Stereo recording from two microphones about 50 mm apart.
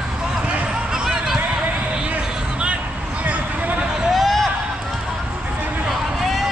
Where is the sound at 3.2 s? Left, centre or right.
Right.